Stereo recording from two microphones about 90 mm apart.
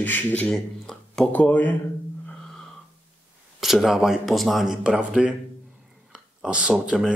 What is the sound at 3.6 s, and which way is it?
Speech, 5° right (ahead or behind).